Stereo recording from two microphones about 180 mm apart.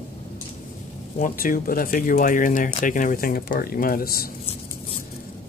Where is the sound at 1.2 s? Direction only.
50° left (ahead or behind).